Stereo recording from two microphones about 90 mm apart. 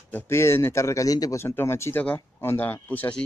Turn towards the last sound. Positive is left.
turn(degrees=20)  # may be behind; listen again after turning